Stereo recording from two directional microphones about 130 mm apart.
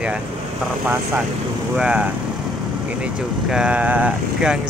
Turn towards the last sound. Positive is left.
turn(degrees=-10)  # may be behind; listen again after turning